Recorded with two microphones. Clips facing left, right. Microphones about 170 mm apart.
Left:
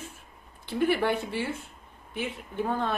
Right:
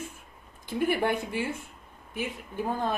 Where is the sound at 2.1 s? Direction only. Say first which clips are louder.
Even; 10° right (ahead or behind).